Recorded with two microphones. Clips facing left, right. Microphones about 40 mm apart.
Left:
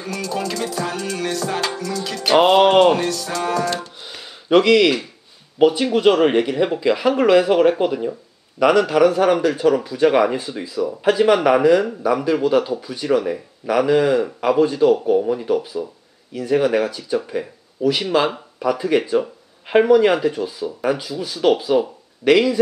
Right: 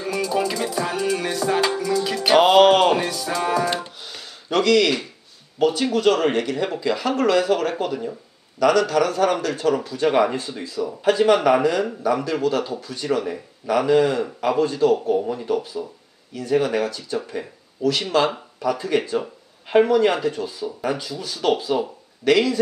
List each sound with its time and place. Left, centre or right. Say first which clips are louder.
0.0 s music: right 2 dB; centre
4.0 s a sound: left 2 dB; centre
5.6 s a man's voice: left 4 dB; centre
17.2 s music: left 4 dB; centre
17.8 s a man's voice: left 2 dB; centre